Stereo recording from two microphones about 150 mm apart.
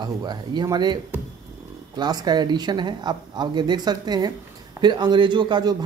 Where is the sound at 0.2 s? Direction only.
25° right (ahead or behind).